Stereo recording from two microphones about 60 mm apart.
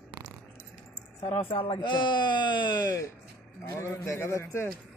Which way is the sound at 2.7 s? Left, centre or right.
Left.